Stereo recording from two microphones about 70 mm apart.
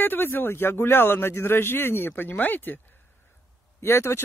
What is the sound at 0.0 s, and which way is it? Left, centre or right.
Speech, left.